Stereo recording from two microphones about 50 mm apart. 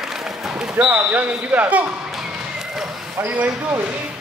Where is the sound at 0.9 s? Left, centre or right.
Right.